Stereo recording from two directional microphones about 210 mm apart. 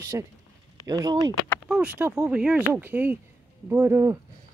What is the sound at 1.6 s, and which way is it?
Speech, 5° right (ahead or behind).